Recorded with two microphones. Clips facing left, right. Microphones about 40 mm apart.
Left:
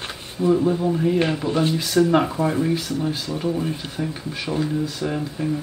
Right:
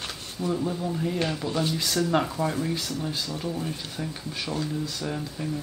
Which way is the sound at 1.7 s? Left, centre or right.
Centre.